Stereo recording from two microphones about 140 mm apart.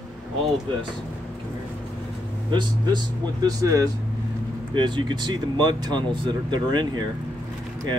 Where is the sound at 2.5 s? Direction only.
30° right (ahead or behind).